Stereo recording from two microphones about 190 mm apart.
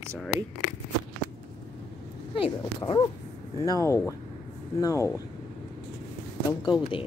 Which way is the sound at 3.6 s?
20° left (ahead or behind).